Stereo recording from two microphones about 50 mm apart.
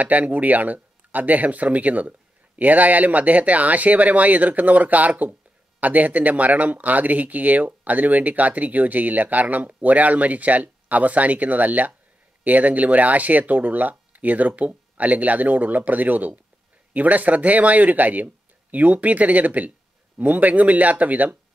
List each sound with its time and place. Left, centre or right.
0.0 s speech: right